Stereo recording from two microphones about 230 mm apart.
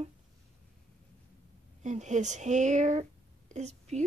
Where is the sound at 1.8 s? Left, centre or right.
Right.